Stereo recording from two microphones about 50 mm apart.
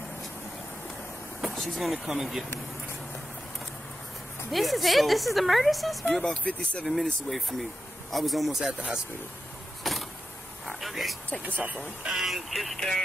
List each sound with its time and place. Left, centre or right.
1.5 s a woman's voice: centre
4.5 s a woman's voice: centre
6.1 s speech: centre
6.4 s speech: left
6.9 s a woman's voice: centre
9.8 s vehicle: centre
10.8 s a woman's voice: centre
11.4 s speech: right
12.1 s a woman's voice: centre